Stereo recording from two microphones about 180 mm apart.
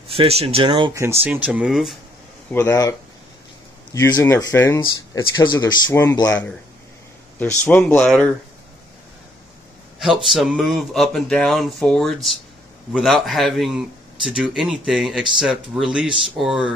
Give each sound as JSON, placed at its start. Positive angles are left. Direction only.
{"t": 0.1, "sound": "speech", "side_deg": -35}
{"t": 1.0, "sound": "speech", "side_deg": -15}
{"t": 2.5, "sound": "speech", "side_deg": 15}
{"t": 7.3, "sound": "speech", "side_deg": 10}
{"t": 9.9, "sound": "speech", "side_deg": -5}